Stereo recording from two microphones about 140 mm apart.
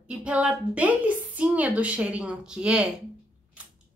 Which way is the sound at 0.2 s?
5° right (ahead or behind).